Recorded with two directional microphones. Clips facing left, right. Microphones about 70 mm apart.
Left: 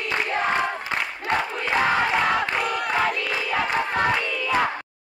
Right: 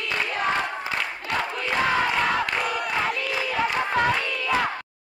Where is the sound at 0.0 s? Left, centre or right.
Left.